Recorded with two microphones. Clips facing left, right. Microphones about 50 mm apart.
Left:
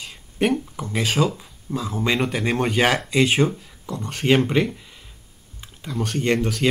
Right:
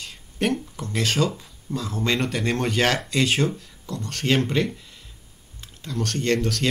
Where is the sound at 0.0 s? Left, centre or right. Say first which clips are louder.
Left 3 dB; centre.